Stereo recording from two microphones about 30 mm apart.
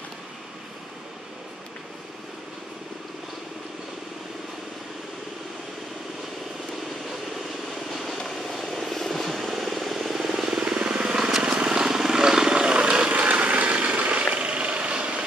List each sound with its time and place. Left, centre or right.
7.9 s vehicle: centre
9.4 s vehicle: centre
10.6 s vehicle: right
13.1 s vehicle: right
14.3 s a sound: right